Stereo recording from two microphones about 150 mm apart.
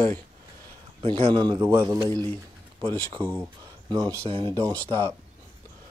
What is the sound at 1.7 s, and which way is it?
Speech, 20° right (ahead or behind).